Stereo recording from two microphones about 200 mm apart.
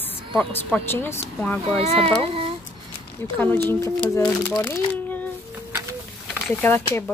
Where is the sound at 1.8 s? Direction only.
30° right (ahead or behind).